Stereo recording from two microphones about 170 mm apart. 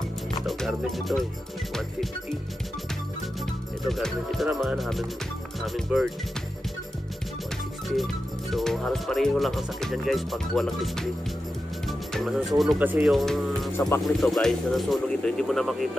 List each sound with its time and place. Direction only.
0.5 s music: centre (ahead or behind)
3.8 s speech: centre (ahead or behind)
7.9 s speech: centre (ahead or behind)
12.1 s speech: centre (ahead or behind)
13.1 s speech: 5° left (ahead or behind)
13.7 s speech: 15° left (ahead or behind)
14.0 s speech: centre (ahead or behind)